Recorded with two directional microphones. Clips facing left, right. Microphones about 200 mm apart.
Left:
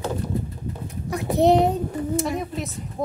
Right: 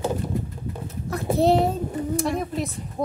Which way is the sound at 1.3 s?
20° left (ahead or behind).